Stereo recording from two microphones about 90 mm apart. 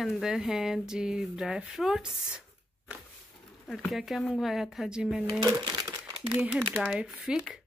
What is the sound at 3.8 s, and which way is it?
Speech, centre (ahead or behind).